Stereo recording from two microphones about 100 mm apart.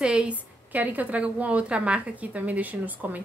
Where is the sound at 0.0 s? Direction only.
10° right (ahead or behind).